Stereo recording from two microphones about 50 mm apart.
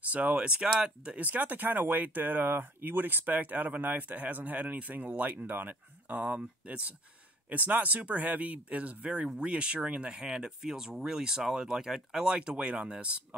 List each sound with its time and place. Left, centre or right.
0.1 s speech: right
1.1 s speech: right